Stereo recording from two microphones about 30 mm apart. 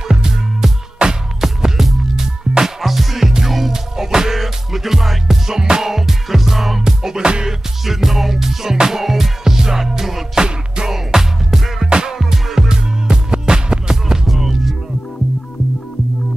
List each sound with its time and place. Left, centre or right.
0.1 s music: centre
1.0 s music: right
1.4 s music: centre
3.7 s music: centre
5.5 s music: right
5.9 s music: centre
7.2 s music: right
7.4 s music: centre
10.3 s music: right
10.9 s music: centre
14.2 s music: centre